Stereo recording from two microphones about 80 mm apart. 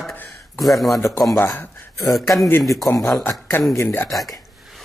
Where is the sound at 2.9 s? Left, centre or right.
Left.